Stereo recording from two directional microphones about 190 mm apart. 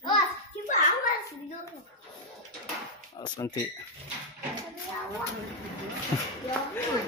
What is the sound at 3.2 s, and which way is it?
Speech, 25° left (ahead or behind).